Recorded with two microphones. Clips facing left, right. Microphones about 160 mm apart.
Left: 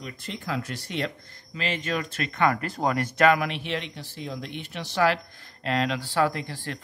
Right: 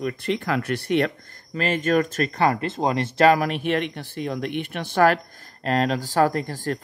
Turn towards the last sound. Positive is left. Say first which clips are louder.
# right 6 dB
turn(degrees=-45)  # may be behind; listen again after turning